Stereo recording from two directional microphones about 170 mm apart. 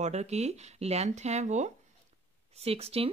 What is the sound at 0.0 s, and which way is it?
A woman's voice, 40° right (ahead or behind).